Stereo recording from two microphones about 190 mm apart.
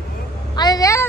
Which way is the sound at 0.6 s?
20° left (ahead or behind).